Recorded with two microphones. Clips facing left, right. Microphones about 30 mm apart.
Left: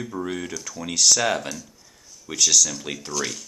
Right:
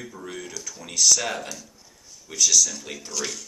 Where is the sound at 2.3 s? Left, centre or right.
Left.